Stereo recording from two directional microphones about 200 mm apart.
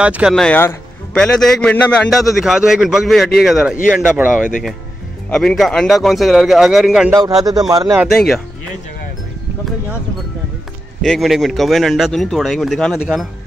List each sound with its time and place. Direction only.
0.0 s a man's voice: 5° right (ahead or behind)
7.1 s speech: 15° right (ahead or behind)
8.0 s a man's voice: centre (ahead or behind)
11.0 s a man's voice: centre (ahead or behind)